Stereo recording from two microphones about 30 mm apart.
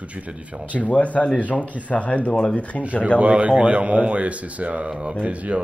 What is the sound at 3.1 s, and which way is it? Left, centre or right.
Speech, right.